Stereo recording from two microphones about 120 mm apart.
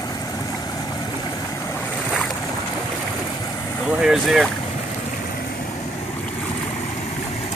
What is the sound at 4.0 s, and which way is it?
Boat, 5° right (ahead or behind).